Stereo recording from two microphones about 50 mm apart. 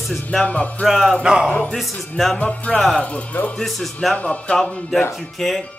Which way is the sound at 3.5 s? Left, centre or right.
Centre.